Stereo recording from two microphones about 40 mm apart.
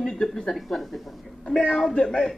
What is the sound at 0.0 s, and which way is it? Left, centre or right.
Speech, centre.